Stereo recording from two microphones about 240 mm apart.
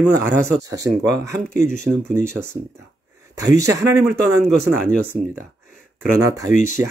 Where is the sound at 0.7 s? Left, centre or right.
Centre.